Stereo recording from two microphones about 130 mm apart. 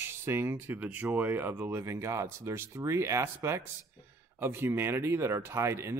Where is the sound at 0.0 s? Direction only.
20° right (ahead or behind).